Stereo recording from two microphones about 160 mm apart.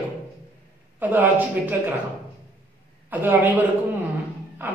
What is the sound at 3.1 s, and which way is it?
Speech, 10° right (ahead or behind).